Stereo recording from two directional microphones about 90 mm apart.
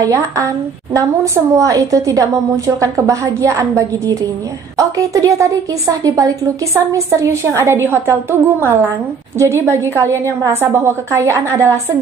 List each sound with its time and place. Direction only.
0.9 s a woman's voice: 35° right (ahead or behind)